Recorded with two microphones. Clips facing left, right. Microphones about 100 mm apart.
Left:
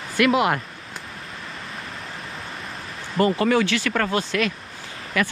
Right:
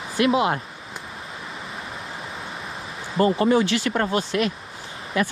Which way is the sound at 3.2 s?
25° right (ahead or behind).